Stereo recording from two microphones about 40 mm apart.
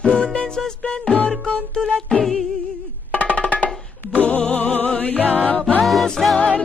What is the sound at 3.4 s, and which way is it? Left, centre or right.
Music, left.